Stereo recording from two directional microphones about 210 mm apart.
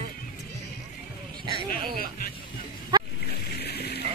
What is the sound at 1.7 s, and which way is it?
Speech, 45° left (ahead or behind).